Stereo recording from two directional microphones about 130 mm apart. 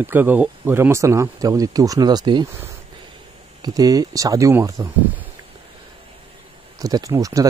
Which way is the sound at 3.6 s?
30° right (ahead or behind).